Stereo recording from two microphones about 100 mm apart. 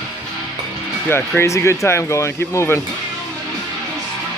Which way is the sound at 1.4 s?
30° left (ahead or behind).